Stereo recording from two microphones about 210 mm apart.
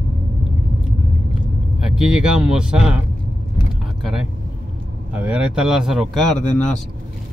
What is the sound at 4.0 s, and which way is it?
A man's voice, centre (ahead or behind).